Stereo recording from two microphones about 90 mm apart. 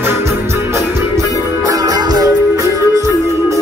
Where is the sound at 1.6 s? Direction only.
40° right (ahead or behind).